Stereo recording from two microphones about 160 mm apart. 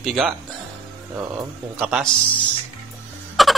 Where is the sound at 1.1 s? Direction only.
10° right (ahead or behind).